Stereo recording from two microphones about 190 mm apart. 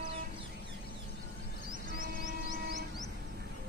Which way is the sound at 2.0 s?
50° right (ahead or behind).